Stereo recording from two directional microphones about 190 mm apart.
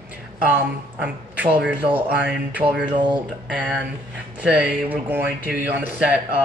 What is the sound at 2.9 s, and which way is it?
Speech, 25° right (ahead or behind).